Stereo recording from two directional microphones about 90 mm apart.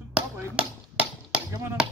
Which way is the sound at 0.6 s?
15° right (ahead or behind).